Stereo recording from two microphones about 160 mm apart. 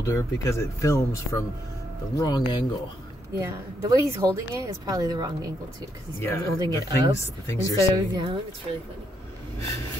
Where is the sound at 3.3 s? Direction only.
20° right (ahead or behind).